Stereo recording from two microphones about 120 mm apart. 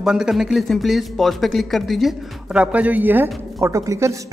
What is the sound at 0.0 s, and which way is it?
A man's voice, 5° right (ahead or behind).